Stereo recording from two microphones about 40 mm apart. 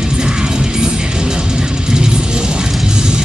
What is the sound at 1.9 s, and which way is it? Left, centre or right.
Music, centre.